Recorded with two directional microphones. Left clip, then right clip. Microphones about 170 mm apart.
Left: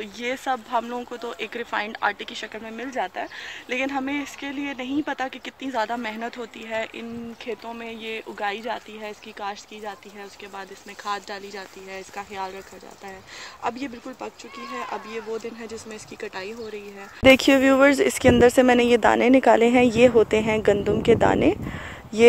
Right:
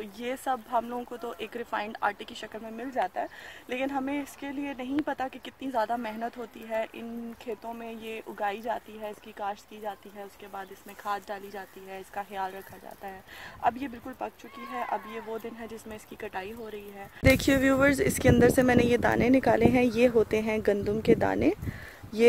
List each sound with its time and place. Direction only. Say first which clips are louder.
0.0 s speech: left 5 dB; centre (ahead or behind)
11.1 s speech: left 3 dB; centre (ahead or behind)
13.6 s speech: right 1 dB; 5° right (ahead or behind); by 22.2 s 10° left (ahead or behind)